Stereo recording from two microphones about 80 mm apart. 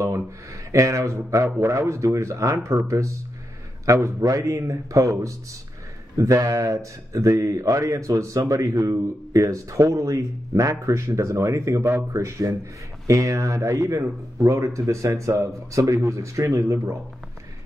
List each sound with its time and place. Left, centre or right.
0.7 s speech: right
3.8 s a man's voice: right